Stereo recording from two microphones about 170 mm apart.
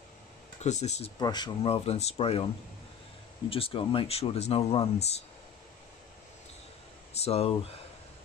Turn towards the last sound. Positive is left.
turn(degrees=35)  # may be behind; listen again after turning